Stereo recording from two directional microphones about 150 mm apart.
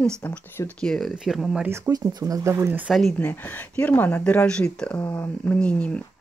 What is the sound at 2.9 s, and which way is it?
Speech, centre (ahead or behind).